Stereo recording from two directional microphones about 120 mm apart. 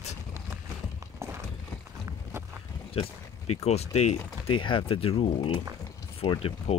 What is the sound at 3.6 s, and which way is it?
Speech, 65° left (ahead or behind).